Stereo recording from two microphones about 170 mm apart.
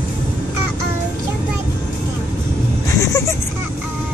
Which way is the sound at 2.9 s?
20° left (ahead or behind).